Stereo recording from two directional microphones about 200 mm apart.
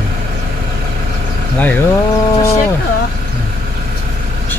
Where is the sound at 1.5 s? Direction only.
10° left (ahead or behind).